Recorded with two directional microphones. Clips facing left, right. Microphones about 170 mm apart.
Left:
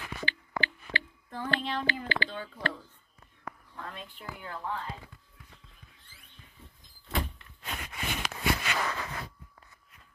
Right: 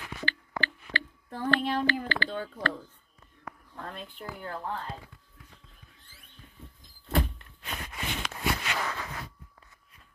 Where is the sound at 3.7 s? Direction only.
45° right (ahead or behind).